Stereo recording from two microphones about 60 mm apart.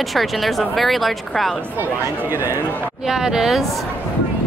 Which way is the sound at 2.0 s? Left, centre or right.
Right.